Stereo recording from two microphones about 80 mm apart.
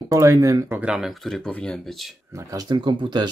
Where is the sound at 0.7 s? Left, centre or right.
Centre.